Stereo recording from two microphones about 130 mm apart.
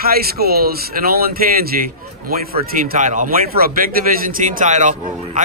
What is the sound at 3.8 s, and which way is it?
A man's voice, 90° right.